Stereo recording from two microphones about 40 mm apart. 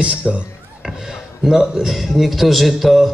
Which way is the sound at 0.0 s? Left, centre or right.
Right.